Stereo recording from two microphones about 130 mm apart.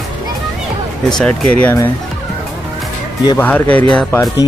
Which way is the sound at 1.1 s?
5° left (ahead or behind).